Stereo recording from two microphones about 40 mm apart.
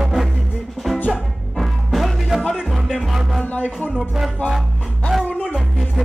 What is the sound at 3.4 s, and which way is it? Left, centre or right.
Music, left.